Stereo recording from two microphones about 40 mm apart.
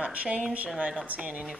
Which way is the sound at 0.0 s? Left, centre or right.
Right.